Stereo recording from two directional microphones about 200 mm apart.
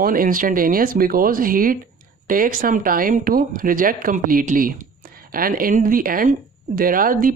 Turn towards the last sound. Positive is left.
turn(degrees=-45)  # may be behind; listen again after turning